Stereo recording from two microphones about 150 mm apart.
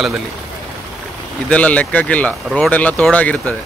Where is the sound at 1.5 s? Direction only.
10° left (ahead or behind).